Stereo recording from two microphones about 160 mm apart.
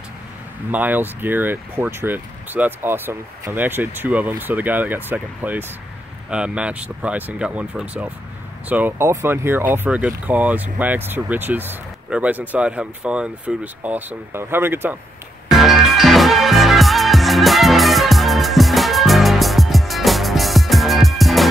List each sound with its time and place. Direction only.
0.7 s speech: 10° right (ahead or behind)
15.5 s music: centre (ahead or behind)